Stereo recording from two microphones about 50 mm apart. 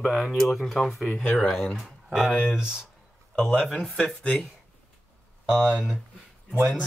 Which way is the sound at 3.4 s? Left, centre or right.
Centre.